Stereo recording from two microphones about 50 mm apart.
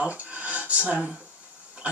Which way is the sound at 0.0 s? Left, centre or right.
Right.